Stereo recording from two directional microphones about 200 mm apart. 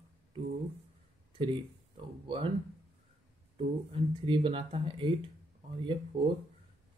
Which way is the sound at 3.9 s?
25° right (ahead or behind).